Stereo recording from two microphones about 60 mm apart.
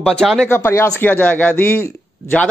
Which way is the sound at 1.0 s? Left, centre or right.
Left.